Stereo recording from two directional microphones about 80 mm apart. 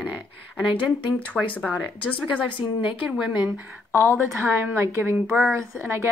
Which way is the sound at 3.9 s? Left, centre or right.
Left.